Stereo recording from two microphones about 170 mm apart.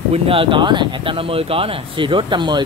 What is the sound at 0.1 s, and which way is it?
Speech, 30° right (ahead or behind).